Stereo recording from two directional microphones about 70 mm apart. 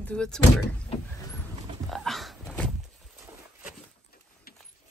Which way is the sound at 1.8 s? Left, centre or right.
Centre.